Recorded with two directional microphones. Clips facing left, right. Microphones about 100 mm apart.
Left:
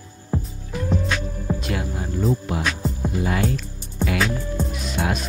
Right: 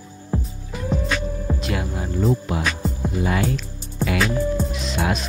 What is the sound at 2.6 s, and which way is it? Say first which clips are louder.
Music: even; centre (ahead or behind).